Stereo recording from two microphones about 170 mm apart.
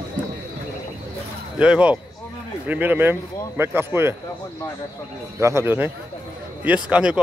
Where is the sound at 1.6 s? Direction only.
5° right (ahead or behind).